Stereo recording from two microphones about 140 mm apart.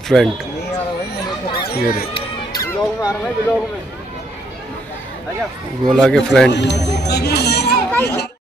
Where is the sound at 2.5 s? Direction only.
25° left (ahead or behind).